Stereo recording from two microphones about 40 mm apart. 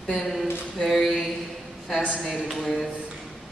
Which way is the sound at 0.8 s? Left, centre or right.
Centre.